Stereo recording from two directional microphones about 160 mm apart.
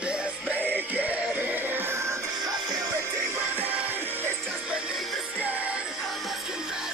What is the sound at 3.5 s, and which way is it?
Music, 10° right (ahead or behind).